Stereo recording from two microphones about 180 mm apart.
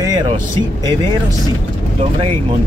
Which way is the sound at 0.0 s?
25° right (ahead or behind).